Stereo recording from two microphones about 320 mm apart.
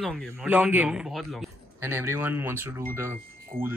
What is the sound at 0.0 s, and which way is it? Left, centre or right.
Speech, centre.